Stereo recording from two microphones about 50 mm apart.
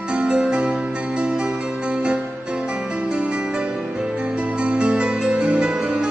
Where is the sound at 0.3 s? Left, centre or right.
Right.